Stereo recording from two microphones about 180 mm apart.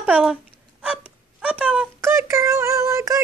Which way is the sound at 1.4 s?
5° right (ahead or behind).